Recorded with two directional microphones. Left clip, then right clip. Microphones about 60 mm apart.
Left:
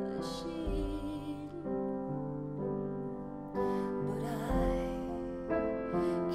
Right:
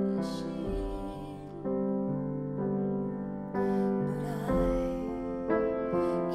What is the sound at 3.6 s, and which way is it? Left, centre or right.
Music, left.